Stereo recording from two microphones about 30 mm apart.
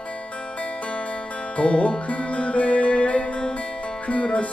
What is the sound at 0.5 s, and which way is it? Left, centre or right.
Music, left.